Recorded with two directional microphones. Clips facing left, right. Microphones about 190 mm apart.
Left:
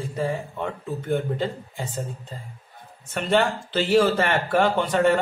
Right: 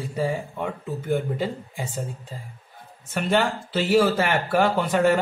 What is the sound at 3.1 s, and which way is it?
Speech, 5° right (ahead or behind).